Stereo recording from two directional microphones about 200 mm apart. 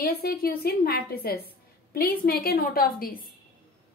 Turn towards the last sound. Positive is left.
turn(degrees=45)  # may be behind; listen again after turning